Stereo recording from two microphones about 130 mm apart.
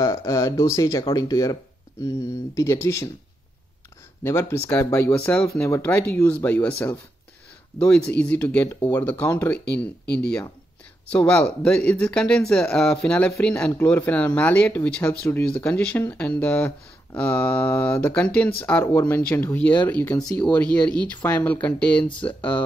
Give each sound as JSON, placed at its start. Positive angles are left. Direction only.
{"t": 0.0, "sound": "speech", "side_deg": 25}
{"t": 4.2, "sound": "speech", "side_deg": 20}
{"t": 15.4, "sound": "speech", "side_deg": 10}